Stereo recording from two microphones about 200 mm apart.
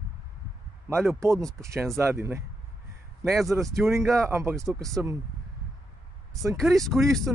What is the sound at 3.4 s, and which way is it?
Speech, 15° right (ahead or behind).